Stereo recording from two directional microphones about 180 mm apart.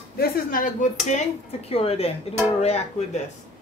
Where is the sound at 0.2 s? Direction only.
50° left (ahead or behind).